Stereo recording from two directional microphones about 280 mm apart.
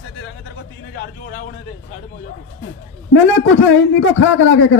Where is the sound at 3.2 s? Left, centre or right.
Left.